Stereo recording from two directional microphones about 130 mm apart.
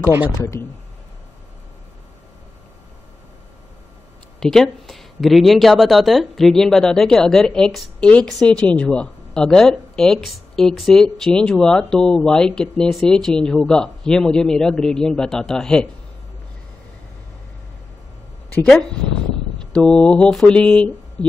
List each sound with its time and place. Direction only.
0.3 s speech: 25° left (ahead or behind)
4.4 s a woman's voice: 5° left (ahead or behind)
18.5 s a woman's voice: 5° left (ahead or behind)